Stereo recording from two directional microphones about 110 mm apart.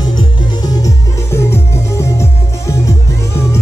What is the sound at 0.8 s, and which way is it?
Music, 25° left (ahead or behind).